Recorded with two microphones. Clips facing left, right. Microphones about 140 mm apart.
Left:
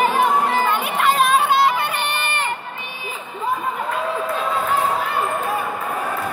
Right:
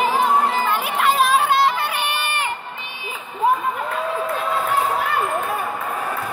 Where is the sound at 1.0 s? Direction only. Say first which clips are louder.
Even; centre (ahead or behind).